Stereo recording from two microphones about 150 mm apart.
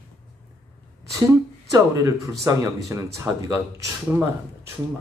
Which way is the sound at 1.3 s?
20° right (ahead or behind).